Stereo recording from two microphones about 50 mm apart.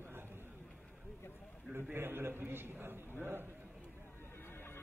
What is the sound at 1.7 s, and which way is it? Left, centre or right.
A man's voice, right.